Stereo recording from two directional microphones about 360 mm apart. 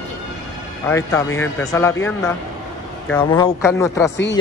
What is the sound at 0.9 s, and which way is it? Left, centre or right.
Speech, centre.